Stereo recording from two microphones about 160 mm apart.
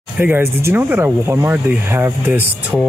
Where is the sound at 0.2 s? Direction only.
15° right (ahead or behind).